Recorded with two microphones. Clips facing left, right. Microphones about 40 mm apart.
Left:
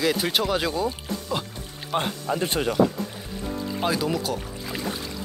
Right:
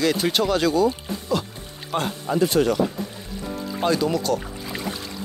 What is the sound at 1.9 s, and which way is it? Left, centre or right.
Speech, centre.